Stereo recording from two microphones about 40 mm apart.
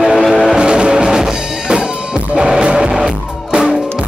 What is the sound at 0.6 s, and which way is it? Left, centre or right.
Music, right.